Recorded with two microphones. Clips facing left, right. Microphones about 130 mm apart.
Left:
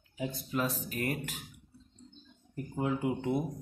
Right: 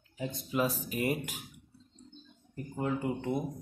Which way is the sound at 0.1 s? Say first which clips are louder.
Left 1 dB; 5° left (ahead or behind).